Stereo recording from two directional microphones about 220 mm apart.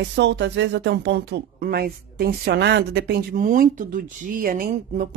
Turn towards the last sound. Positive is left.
turn(degrees=-40)  # may be behind; listen again after turning